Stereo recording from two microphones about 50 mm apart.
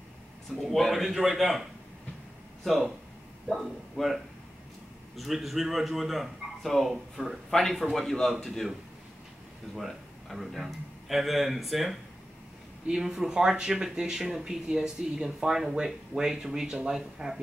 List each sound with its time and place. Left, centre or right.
0.6 s a man's voice: centre
2.6 s speech: centre
3.9 s a man's voice: centre
9.8 s speech: centre